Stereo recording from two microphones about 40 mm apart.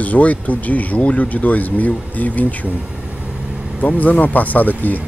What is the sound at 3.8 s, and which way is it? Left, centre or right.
Speech, left.